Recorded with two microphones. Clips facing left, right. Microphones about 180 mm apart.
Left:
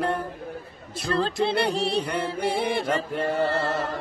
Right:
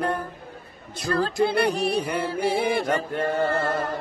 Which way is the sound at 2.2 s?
20° left (ahead or behind).